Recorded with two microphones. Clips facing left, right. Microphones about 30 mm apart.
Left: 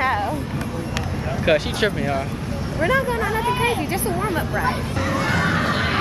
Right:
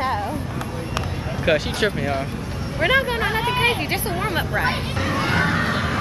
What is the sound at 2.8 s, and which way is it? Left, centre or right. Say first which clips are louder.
Speech: right 1 dB; right.